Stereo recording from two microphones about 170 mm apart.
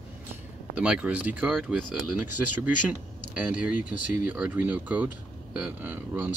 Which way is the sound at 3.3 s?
10° right (ahead or behind).